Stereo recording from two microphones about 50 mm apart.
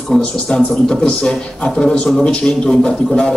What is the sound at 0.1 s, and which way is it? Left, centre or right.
Speech, centre.